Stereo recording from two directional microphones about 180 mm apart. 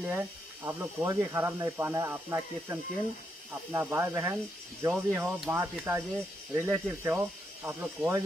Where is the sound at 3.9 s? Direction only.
15° right (ahead or behind).